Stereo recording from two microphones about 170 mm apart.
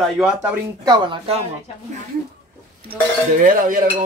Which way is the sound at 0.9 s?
35° right (ahead or behind).